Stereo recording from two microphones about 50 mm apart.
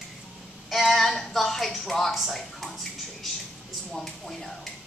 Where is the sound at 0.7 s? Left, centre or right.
Centre.